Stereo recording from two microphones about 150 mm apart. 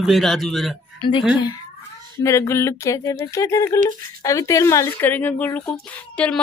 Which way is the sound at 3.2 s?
20° left (ahead or behind).